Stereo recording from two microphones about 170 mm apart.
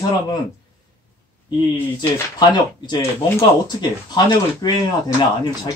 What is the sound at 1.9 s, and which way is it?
Speech, 25° left (ahead or behind).